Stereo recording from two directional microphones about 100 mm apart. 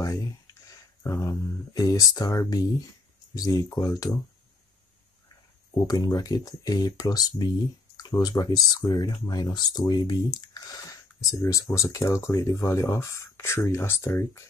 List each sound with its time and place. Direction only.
0.0 s speech: 35° left (ahead or behind)
5.9 s speech: 40° left (ahead or behind)